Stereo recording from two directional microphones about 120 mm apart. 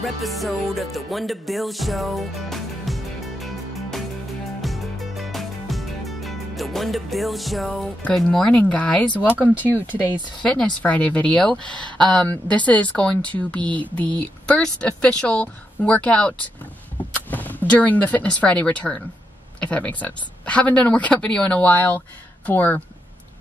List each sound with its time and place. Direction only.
0.0 s music: centre (ahead or behind)
8.0 s speech: 5° left (ahead or behind)